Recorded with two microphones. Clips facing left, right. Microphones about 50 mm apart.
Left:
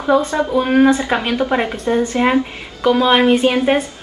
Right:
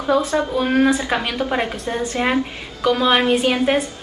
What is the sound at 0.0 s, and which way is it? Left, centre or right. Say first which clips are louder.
Speech: left 3 dB; centre.